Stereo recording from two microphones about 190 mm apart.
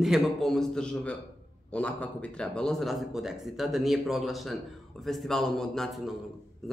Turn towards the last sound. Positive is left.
turn(degrees=0)  # may be behind; listen again after turning